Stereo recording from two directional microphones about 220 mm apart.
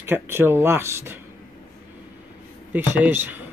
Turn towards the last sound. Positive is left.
turn(degrees=-10)  # may be behind; listen again after turning